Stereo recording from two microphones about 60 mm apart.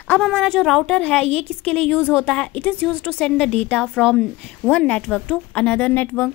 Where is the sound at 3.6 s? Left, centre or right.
Left.